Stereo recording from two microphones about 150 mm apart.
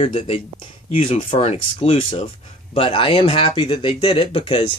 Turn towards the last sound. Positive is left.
turn(degrees=35)  # may be behind; listen again after turning